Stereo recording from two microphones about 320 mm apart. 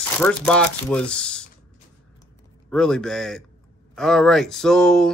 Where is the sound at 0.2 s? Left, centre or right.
Centre.